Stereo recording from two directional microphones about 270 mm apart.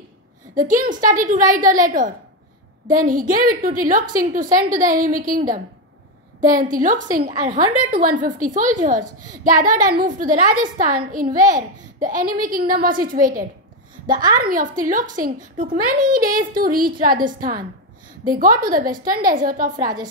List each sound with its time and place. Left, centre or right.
0.6 s a woman's voice: right
6.5 s a woman's voice: right
14.2 s a woman's voice: centre
14.5 s a woman's voice: right